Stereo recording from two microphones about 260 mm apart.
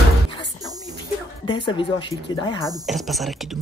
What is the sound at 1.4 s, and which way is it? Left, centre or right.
Speech, centre.